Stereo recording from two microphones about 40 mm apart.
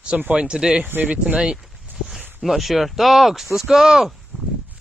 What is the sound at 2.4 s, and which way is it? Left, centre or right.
Speech, centre.